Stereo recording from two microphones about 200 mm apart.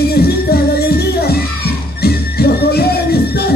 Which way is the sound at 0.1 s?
50° left (ahead or behind).